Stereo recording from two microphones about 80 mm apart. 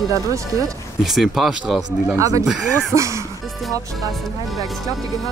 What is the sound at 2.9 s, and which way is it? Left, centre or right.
Speech, right.